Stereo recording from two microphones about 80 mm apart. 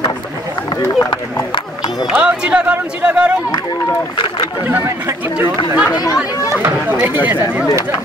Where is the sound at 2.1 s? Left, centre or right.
Centre.